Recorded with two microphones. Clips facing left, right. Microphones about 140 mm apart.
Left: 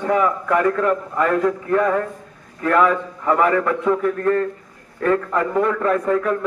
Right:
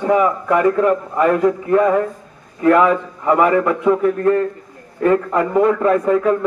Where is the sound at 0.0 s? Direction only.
15° right (ahead or behind).